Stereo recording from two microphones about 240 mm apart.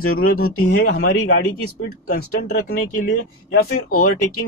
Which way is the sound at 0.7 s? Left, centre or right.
Left.